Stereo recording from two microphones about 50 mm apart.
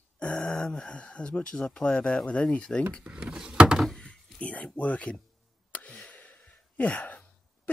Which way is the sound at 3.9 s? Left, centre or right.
Centre.